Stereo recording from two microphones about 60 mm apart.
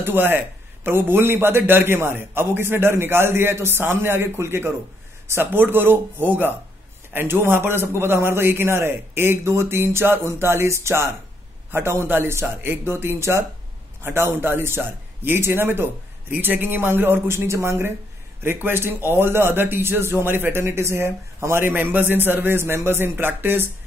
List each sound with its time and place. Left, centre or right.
0.0 s a man's voice: right
5.3 s a man's voice: right
20.2 s a man's voice: right